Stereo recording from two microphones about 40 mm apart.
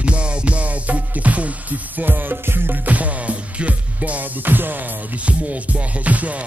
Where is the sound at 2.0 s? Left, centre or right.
Right.